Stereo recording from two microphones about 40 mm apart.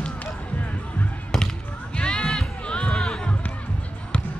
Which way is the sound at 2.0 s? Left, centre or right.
Left.